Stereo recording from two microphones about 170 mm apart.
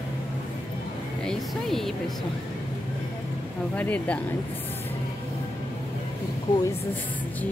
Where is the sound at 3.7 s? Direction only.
10° left (ahead or behind).